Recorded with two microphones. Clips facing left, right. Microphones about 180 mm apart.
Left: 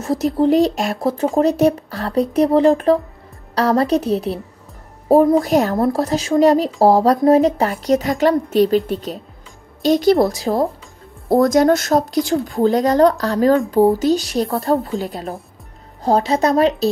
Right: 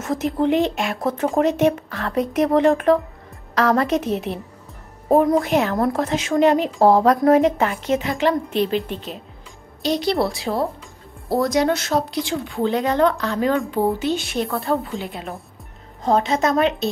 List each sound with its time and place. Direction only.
0.0 s speech: 35° left (ahead or behind)
5.4 s a woman's voice: 40° left (ahead or behind)